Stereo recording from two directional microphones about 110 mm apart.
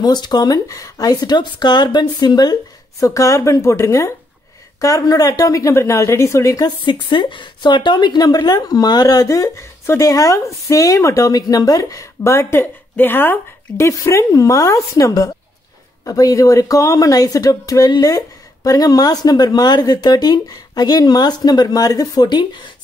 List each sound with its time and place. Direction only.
0.0 s speech: 40° left (ahead or behind)
3.0 s speech: 30° left (ahead or behind)
6.8 s speech: 50° left (ahead or behind)